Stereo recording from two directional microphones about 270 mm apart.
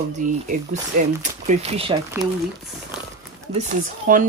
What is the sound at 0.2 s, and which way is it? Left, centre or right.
Speech, right.